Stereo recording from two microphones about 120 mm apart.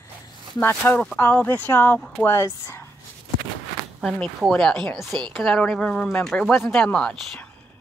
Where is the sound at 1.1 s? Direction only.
15° left (ahead or behind).